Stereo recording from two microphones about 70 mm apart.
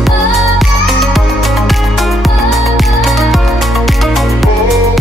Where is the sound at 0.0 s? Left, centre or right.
Centre.